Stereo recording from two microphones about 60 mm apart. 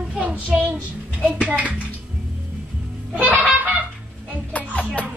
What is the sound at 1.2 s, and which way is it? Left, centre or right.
Speech, centre.